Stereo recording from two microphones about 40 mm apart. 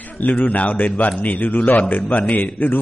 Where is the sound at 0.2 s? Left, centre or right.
Left.